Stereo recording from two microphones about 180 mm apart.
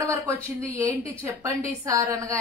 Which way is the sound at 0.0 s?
15° right (ahead or behind).